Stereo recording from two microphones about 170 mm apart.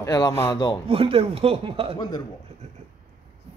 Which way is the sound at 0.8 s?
35° right (ahead or behind).